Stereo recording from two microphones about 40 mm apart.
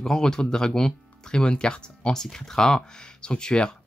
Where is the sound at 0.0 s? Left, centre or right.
Centre.